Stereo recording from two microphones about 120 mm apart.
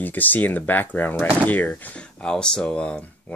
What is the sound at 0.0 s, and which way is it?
Speech, 15° left (ahead or behind).